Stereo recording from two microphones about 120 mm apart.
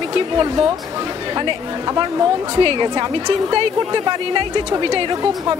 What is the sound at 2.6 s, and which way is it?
A woman's voice, 50° right (ahead or behind).